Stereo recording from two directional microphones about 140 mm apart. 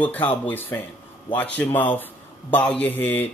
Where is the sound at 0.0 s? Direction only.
10° left (ahead or behind).